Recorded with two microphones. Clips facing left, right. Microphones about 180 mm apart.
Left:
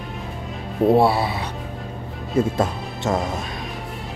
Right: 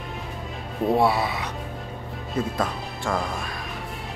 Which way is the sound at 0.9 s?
30° left (ahead or behind).